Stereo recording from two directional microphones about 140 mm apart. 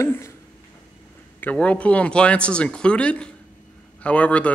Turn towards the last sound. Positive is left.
turn(degrees=10)  # may be behind; listen again after turning